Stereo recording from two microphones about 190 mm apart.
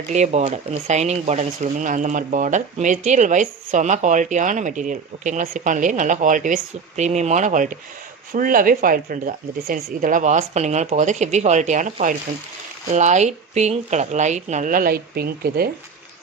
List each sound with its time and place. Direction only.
0.1 s speech: 40° right (ahead or behind); by 15.7 s 55° right (ahead or behind)